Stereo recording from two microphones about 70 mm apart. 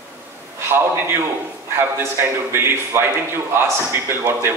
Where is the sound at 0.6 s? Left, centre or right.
Right.